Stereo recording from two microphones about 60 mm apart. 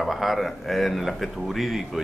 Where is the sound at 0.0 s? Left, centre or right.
Centre.